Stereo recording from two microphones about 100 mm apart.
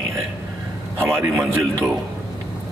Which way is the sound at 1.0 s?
25° right (ahead or behind).